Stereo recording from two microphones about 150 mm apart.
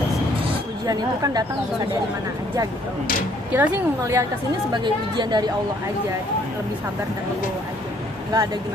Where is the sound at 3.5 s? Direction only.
15° right (ahead or behind); by 5.5 s 30° right (ahead or behind).